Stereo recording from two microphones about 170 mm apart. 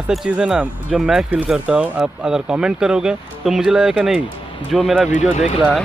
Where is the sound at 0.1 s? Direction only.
Centre (ahead or behind).